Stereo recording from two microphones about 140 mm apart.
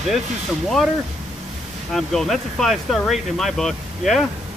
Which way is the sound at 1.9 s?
Centre (ahead or behind).